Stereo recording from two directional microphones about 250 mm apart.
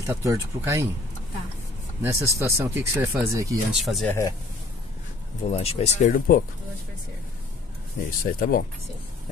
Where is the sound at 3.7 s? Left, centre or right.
Centre.